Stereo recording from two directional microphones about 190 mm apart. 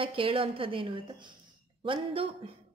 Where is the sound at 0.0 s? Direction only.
30° right (ahead or behind).